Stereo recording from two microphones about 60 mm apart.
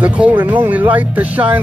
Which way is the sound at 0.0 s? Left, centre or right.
Right.